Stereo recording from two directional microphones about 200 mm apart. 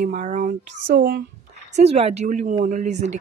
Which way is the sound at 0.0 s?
35° right (ahead or behind).